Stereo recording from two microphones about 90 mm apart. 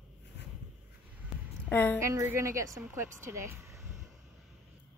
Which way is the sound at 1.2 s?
15° right (ahead or behind).